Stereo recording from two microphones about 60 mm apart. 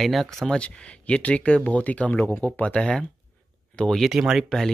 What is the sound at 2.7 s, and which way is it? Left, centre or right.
Speech, centre.